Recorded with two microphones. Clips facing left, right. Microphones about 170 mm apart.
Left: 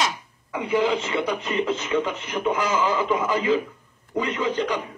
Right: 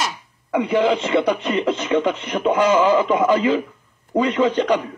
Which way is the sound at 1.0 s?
75° right (ahead or behind).